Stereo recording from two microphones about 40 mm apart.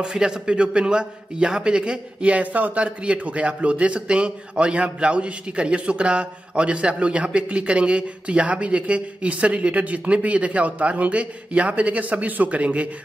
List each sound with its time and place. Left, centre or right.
0.0 s a man's voice: centre
2.2 s a man's voice: right